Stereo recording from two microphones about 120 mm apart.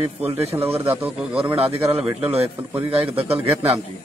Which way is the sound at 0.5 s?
55° right (ahead or behind).